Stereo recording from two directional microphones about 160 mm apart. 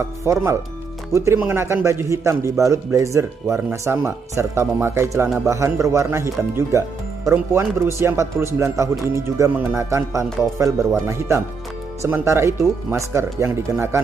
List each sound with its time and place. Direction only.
0.0 s a man's voice: 15° right (ahead or behind)